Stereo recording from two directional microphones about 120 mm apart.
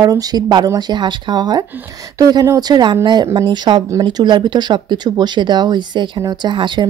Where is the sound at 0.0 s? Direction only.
35° right (ahead or behind).